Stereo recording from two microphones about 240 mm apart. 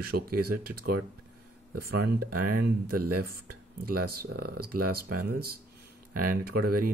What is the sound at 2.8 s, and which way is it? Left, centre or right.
Speech, right.